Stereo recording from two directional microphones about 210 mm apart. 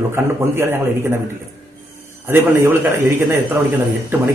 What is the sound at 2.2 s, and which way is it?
Speech, 10° right (ahead or behind).